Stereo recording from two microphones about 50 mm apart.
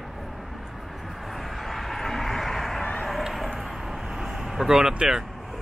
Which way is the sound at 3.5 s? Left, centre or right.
Centre.